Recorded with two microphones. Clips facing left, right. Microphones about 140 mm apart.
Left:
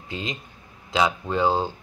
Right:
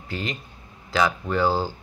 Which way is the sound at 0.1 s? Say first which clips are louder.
Right 1 dB; 20° left (ahead or behind).